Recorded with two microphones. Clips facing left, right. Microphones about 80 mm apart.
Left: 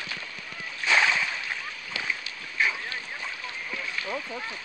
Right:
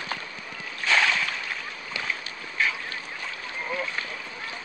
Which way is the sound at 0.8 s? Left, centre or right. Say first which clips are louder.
Even; centre.